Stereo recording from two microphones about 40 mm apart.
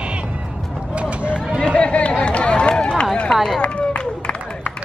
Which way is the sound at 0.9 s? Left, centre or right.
Right.